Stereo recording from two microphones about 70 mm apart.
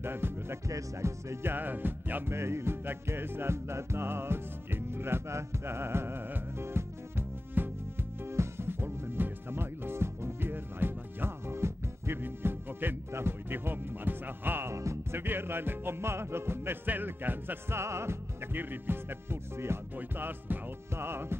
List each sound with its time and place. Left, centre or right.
0.0 s music: right
0.7 s music: right
14.7 s music: right
17.7 s music: right